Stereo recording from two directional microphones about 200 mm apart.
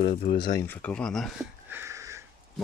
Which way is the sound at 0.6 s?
10° left (ahead or behind).